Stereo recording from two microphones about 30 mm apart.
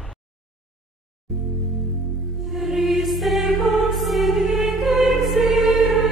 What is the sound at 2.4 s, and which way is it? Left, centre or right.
Music, centre.